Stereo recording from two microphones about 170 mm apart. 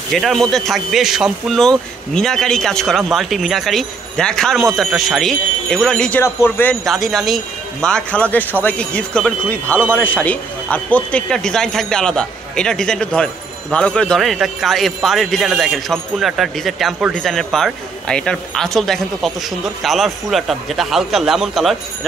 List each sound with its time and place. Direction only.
0.1 s speech: centre (ahead or behind)